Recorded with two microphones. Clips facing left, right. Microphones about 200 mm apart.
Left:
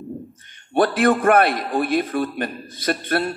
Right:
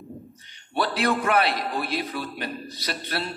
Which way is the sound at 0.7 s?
50° left (ahead or behind).